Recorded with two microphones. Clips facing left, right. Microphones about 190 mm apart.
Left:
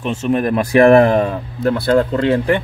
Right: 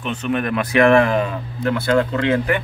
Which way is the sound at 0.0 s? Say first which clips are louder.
Left 5 dB; 35° left (ahead or behind).